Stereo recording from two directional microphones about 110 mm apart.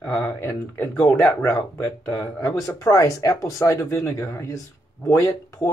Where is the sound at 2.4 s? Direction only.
30° left (ahead or behind).